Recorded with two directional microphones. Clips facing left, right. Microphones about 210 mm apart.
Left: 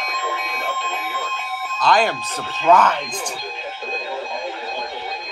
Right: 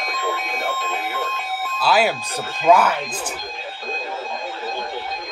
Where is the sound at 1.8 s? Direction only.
5° right (ahead or behind).